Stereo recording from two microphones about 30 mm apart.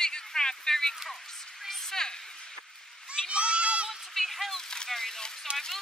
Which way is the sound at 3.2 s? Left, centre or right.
Right.